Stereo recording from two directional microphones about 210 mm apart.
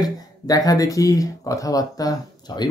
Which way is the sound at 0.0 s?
15° left (ahead or behind).